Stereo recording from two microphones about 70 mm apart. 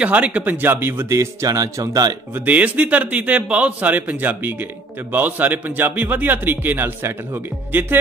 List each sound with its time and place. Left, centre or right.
0.0 s speech: right
2.3 s a man's voice: right